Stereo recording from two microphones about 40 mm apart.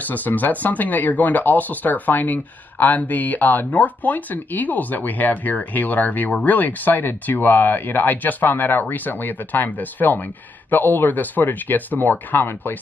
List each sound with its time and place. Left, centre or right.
0.0 s speech: left